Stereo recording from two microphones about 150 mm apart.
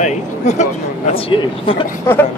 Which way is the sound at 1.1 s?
35° left (ahead or behind).